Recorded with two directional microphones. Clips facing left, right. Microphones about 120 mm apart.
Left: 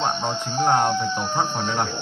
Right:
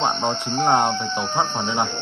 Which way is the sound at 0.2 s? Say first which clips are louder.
Right 2 dB; 5° left (ahead or behind).